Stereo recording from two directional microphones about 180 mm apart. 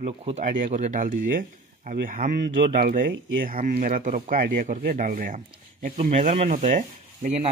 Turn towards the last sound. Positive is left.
turn(degrees=-40)  # may be behind; listen again after turning